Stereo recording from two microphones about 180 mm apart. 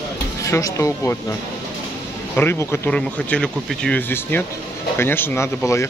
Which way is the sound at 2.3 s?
10° left (ahead or behind).